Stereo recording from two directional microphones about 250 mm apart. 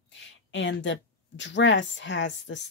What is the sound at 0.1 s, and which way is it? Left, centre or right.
Speech, left.